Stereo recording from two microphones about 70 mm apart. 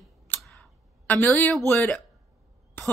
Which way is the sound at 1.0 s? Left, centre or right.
Left.